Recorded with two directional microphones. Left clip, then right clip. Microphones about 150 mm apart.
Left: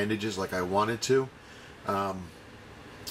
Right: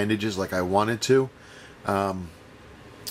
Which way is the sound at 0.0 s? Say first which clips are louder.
Right 4 dB; 20° right (ahead or behind).